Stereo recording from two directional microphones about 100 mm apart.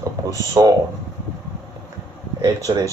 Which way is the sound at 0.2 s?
40° right (ahead or behind).